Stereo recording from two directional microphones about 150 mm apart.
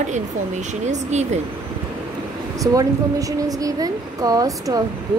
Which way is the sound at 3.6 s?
25° right (ahead or behind).